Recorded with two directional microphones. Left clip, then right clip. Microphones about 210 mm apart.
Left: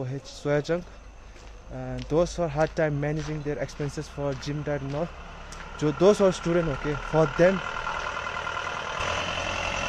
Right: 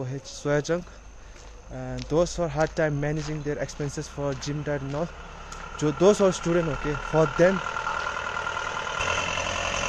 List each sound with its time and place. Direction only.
0.0 s speech: 10° right (ahead or behind)
7.5 s vehicle: 15° right (ahead or behind); by 9.8 s 35° right (ahead or behind)